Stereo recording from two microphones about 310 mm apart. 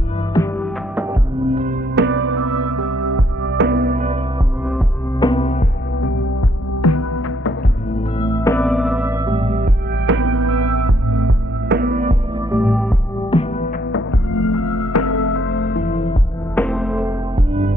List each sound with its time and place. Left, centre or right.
0.3 s music: centre
1.5 s music: right
2.0 s music: right
3.4 s music: right
5.2 s music: centre
6.8 s music: left
8.2 s music: centre
10.0 s music: right
11.7 s music: right
12.4 s music: centre
13.2 s music: centre
14.3 s music: left
16.5 s music: centre